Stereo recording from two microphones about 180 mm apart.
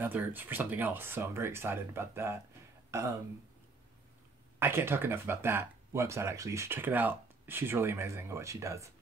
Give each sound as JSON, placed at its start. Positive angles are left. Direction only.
{"t": 0.0, "sound": "speech", "side_deg": -10}
{"t": 4.6, "sound": "speech", "side_deg": -10}